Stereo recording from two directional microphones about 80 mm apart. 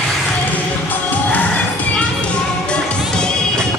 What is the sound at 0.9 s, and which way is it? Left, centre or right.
Music, left.